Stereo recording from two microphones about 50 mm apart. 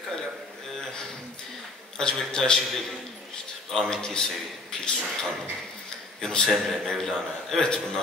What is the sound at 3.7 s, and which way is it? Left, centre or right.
Speech, centre.